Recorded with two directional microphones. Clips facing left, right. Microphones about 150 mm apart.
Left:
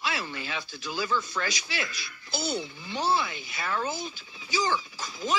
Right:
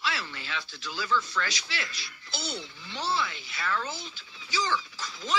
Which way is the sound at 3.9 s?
50° left (ahead or behind).